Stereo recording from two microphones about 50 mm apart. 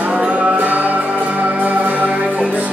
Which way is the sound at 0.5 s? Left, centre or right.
Right.